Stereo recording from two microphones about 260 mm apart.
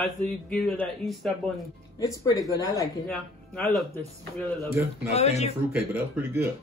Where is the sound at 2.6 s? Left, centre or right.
Centre.